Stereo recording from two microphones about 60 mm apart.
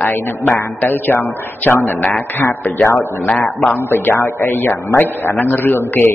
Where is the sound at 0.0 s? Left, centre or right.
Left.